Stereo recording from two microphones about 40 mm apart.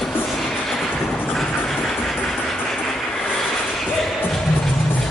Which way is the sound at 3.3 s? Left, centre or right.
Centre.